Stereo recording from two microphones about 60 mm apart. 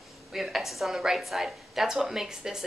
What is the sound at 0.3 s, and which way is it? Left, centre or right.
A woman's voice, centre.